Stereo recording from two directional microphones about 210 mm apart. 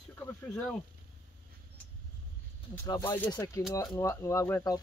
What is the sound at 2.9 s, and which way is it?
Speech, 20° left (ahead or behind).